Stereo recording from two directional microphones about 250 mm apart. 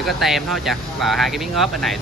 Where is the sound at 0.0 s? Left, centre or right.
Centre.